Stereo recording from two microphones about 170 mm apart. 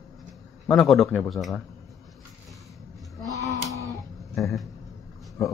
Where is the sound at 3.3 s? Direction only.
20° left (ahead or behind).